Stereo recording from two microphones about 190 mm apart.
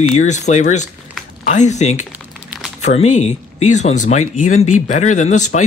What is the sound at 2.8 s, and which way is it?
Speech, 35° left (ahead or behind).